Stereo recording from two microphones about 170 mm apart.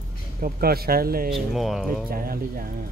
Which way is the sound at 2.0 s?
60° right (ahead or behind).